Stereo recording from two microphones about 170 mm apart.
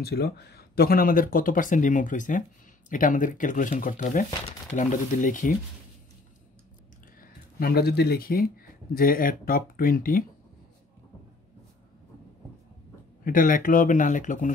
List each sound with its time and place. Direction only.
0.0 s speech: 70° left (ahead or behind); by 5.5 s 50° left (ahead or behind)
7.2 s speech: 60° left (ahead or behind)
13.2 s speech: 55° left (ahead or behind)